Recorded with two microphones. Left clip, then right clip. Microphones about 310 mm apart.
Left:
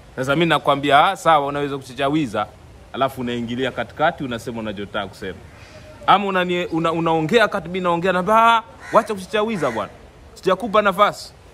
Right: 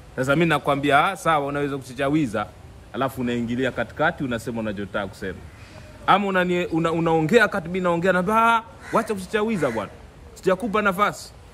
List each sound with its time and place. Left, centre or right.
0.1 s a man's voice: centre